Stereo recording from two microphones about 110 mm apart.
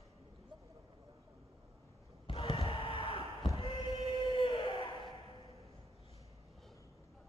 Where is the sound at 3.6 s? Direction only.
55° left (ahead or behind).